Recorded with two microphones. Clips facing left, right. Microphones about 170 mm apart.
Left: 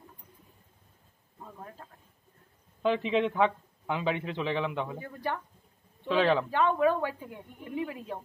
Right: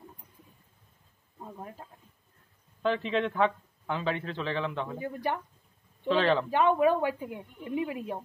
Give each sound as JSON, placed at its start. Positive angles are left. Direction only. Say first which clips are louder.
{"t": 1.4, "sound": "a man's voice", "louder": "right 3 dB", "side_deg": -15}
{"t": 2.8, "sound": "a man's voice", "louder": "left 2 dB", "side_deg": 15}
{"t": 4.9, "sound": "speech", "louder": "right 3 dB", "side_deg": -15}
{"t": 6.0, "sound": "a man's voice", "louder": "even", "side_deg": 10}
{"t": 6.5, "sound": "speech", "louder": "right 2 dB", "side_deg": -15}